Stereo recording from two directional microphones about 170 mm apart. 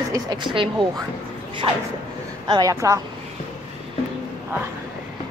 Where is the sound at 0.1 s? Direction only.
25° right (ahead or behind).